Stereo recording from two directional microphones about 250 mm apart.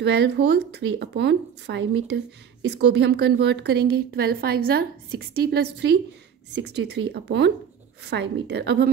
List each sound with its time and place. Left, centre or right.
0.0 s speech: right